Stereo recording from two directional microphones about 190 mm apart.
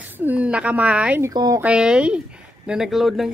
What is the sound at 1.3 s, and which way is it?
Speech, 20° right (ahead or behind).